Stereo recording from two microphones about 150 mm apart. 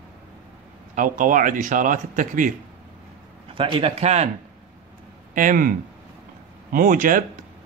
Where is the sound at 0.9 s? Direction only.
60° right (ahead or behind).